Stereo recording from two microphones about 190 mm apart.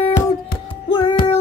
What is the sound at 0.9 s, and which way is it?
Music, 25° left (ahead or behind).